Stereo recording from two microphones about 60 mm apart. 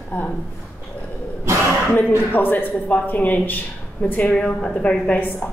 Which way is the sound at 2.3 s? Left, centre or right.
Left.